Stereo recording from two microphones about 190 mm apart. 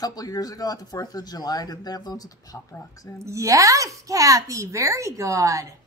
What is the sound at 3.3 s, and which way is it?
A child's voice, 15° right (ahead or behind).